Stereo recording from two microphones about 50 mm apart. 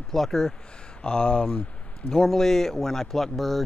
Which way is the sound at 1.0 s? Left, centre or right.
Left.